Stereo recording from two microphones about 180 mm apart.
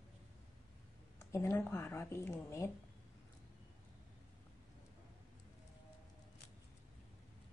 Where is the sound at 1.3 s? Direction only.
15° left (ahead or behind).